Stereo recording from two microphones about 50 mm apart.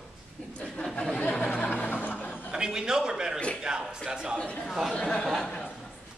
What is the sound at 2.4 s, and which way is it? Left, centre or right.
A man's voice, centre.